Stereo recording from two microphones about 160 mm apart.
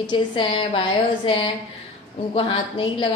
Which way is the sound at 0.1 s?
30° left (ahead or behind).